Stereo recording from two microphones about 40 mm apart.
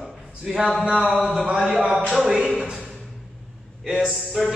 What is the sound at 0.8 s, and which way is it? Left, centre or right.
Speech, right.